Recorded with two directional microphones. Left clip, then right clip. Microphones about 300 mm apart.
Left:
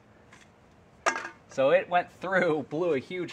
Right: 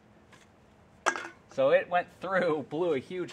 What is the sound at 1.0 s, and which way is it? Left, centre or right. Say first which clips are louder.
Dishes: left 2 dB; centre.